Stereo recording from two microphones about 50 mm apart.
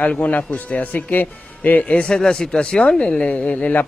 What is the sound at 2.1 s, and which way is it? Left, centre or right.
Speech, centre.